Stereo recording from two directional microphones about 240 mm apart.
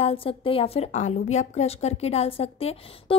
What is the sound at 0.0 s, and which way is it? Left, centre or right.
A woman's voice, left.